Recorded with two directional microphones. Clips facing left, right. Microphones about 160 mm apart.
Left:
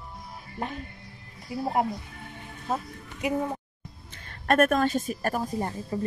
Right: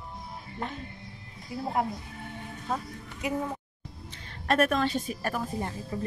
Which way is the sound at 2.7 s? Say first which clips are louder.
Left 2 dB; 10° left (ahead or behind).